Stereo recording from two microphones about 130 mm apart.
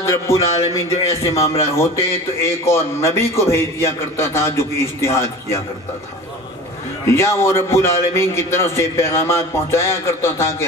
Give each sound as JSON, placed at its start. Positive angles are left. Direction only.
{"t": 0.1, "sound": "a man's voice", "side_deg": 20}
{"t": 7.1, "sound": "a man's voice", "side_deg": 20}